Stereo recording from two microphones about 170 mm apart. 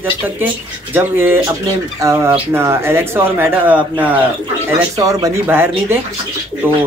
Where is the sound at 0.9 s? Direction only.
10° right (ahead or behind).